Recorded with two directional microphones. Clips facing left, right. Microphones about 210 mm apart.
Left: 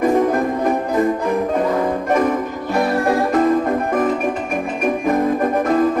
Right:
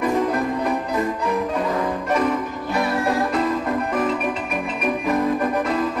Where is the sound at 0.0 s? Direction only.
45° left (ahead or behind).